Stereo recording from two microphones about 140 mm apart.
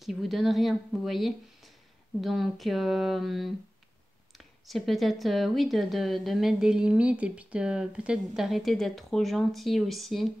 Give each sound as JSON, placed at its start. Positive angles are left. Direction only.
{"t": 0.0, "sound": "speech", "side_deg": 0}